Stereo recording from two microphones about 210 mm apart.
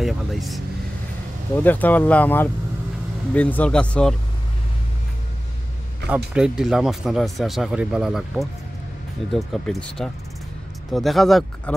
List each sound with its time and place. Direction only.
0.0 s speech: centre (ahead or behind)
1.6 s speech: 10° left (ahead or behind)
6.0 s speech: 5° right (ahead or behind)